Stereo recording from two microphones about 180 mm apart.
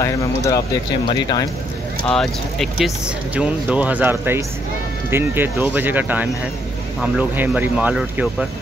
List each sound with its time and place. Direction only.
0.0 s speech: 15° left (ahead or behind)
2.0 s speech: centre (ahead or behind)